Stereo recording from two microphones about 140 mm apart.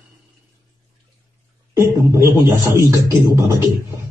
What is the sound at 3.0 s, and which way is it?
Speech, 20° right (ahead or behind).